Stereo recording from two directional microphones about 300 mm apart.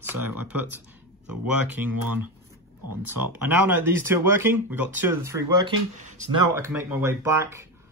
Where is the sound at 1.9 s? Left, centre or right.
Right.